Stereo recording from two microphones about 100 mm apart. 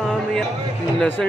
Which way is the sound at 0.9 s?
20° left (ahead or behind).